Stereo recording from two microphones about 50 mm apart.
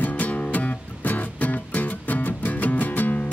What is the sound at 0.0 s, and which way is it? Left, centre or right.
Music, left.